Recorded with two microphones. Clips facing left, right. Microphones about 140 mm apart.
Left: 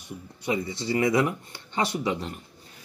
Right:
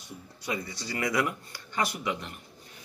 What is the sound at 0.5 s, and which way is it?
Speech, 20° left (ahead or behind).